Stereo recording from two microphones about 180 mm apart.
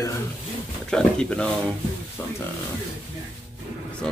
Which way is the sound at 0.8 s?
5° left (ahead or behind).